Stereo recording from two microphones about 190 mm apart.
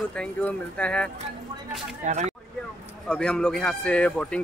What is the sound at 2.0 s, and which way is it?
Speech, 35° right (ahead or behind).